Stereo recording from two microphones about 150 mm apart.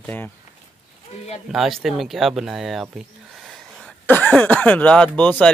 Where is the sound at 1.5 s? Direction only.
Centre (ahead or behind).